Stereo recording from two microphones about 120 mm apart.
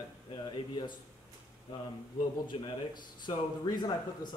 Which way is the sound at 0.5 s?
40° left (ahead or behind).